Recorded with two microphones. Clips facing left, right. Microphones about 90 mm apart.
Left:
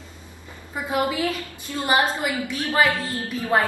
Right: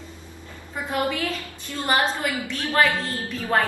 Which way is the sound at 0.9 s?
10° left (ahead or behind).